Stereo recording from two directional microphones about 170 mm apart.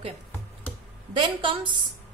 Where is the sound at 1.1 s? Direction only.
30° right (ahead or behind).